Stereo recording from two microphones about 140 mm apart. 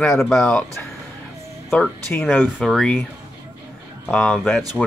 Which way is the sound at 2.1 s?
15° left (ahead or behind).